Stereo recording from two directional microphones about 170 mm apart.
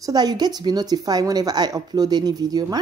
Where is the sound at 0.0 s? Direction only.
25° right (ahead or behind).